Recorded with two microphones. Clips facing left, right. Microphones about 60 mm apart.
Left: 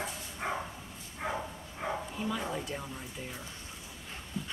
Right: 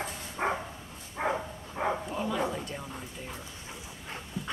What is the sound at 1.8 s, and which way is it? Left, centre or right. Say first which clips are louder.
Bow-wow: right 6 dB; right.